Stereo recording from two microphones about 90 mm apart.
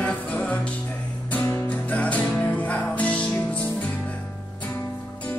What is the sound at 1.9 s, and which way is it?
Music, 15° left (ahead or behind).